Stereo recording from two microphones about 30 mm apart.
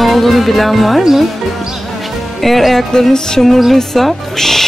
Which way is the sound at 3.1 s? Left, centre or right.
Centre.